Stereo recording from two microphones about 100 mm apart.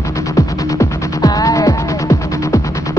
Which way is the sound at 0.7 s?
40° left (ahead or behind).